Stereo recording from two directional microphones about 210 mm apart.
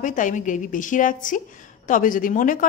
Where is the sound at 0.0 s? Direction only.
40° left (ahead or behind).